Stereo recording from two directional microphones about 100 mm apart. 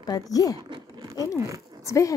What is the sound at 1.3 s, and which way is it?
Speech, 30° right (ahead or behind).